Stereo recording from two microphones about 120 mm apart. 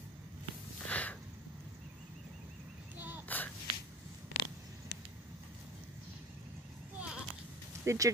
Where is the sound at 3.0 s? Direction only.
15° right (ahead or behind).